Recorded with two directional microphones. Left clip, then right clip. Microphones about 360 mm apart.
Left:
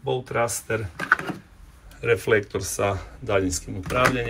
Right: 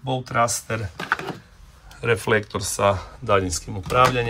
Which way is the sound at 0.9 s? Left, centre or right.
Centre.